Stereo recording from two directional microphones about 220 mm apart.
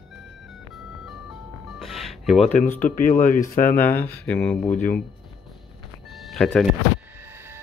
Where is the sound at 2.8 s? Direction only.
35° left (ahead or behind).